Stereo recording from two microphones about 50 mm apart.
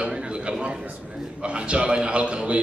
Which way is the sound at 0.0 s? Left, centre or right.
Centre.